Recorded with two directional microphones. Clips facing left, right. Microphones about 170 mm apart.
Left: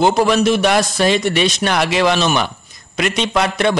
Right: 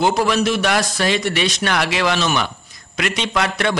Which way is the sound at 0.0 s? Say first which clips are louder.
Left 4 dB; 25° left (ahead or behind).